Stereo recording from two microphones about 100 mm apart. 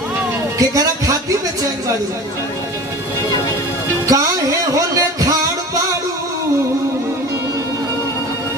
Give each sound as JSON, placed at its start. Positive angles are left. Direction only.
{"t": 0.6, "sound": "speech", "side_deg": -35}
{"t": 4.1, "sound": "music", "side_deg": -35}